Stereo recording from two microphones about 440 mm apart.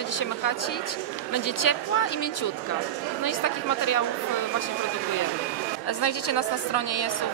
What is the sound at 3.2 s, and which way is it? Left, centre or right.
Speech, left.